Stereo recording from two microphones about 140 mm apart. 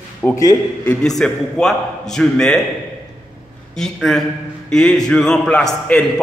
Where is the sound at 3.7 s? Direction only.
5° left (ahead or behind).